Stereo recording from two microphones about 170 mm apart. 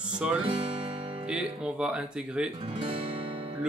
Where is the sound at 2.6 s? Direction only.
35° right (ahead or behind).